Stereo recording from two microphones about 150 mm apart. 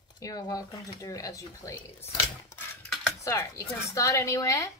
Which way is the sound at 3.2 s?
20° left (ahead or behind).